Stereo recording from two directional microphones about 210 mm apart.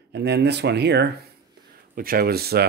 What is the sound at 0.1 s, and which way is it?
Speech, 50° right (ahead or behind).